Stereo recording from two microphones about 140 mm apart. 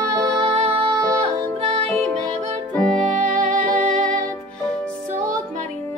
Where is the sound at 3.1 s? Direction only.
60° right (ahead or behind).